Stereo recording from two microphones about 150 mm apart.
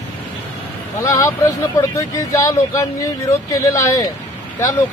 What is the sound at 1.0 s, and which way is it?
Speech, 20° left (ahead or behind).